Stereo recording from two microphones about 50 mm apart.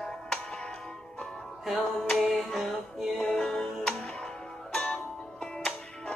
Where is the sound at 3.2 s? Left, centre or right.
Centre.